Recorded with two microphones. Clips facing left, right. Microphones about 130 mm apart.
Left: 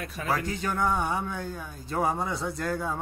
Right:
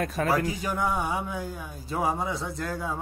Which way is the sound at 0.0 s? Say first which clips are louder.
Right 9 dB; 45° right (ahead or behind).